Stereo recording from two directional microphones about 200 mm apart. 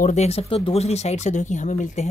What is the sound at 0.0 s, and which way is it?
Speech, 35° left (ahead or behind).